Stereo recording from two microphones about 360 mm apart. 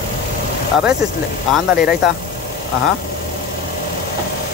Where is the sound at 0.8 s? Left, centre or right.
Centre.